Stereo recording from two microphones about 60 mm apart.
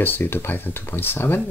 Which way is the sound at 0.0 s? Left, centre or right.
Left.